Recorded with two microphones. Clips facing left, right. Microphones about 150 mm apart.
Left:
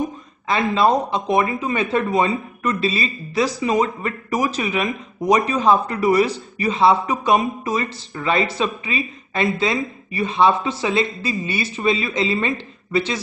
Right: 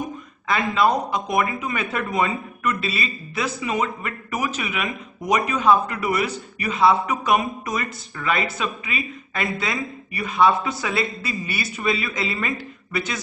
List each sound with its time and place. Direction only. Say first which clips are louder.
0.5 s a man's voice: left 3 dB; 30° left (ahead or behind)